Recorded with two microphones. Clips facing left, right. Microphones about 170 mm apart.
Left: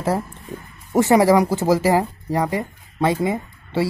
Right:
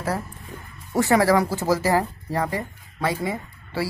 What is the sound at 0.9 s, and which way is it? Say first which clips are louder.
A woman's voice: left 4 dB; 20° left (ahead or behind).